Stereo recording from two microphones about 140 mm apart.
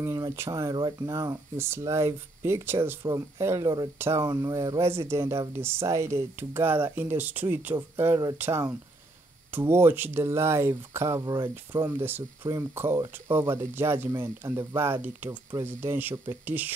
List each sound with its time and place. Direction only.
0.0 s speech: 20° right (ahead or behind)